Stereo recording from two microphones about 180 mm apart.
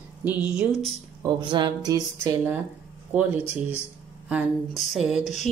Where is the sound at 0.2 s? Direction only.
10° right (ahead or behind).